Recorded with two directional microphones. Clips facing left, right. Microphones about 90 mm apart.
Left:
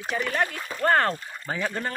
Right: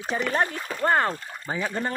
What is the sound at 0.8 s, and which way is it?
Speech, 15° right (ahead or behind).